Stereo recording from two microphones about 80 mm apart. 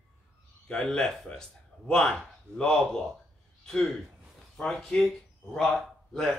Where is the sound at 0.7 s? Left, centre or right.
Centre.